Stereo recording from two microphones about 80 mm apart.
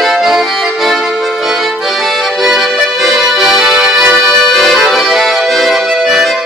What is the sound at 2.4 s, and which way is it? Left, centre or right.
Accordion, centre.